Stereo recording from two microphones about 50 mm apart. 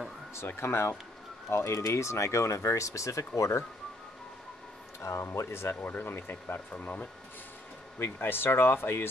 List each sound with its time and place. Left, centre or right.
0.6 s speech: left
3.3 s speech: left
5.3 s speech: left
5.8 s speech: left
6.7 s speech: left
8.0 s speech: left